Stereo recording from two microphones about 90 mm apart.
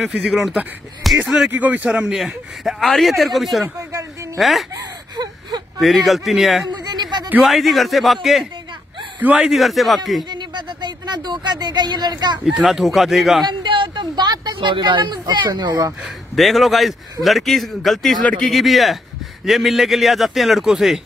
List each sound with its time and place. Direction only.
1.0 s a man's voice: 5° right (ahead or behind)
1.5 s a man's voice: 20° right (ahead or behind); by 4.6 s centre (ahead or behind)
4.7 s gasp: 50° right (ahead or behind)
5.8 s a man's voice: centre (ahead or behind)
6.7 s a sound: 50° right (ahead or behind)
7.4 s a man's voice: centre (ahead or behind)
10.3 s speech: 55° right (ahead or behind)
12.4 s a man's voice: 5° right (ahead or behind)
13.5 s speech: 65° right (ahead or behind)
16.0 s a man's voice: centre (ahead or behind)